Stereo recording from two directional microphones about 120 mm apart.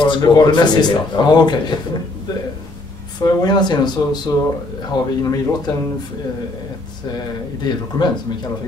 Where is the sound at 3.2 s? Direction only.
35° left (ahead or behind).